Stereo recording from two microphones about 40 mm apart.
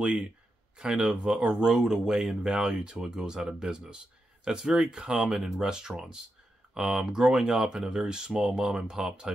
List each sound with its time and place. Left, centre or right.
0.0 s speech: right
0.7 s speech: centre
1.7 s speech: centre
5.3 s speech: centre